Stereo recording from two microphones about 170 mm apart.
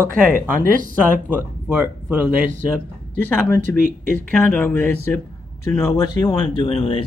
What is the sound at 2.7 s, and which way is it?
Speech, 10° left (ahead or behind).